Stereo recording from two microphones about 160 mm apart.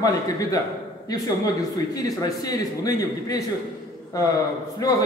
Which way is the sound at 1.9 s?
25° left (ahead or behind).